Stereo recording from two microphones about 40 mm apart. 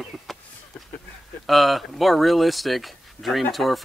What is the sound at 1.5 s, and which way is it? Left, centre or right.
Speech, centre.